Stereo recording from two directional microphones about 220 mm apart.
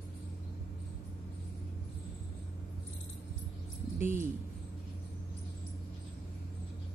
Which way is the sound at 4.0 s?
10° right (ahead or behind).